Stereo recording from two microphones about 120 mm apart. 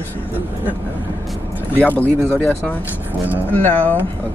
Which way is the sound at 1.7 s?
15° left (ahead or behind).